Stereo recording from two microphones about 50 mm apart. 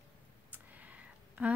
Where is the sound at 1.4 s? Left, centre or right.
Right.